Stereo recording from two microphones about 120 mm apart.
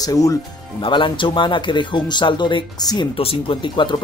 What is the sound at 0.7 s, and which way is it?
Speech, 40° left (ahead or behind).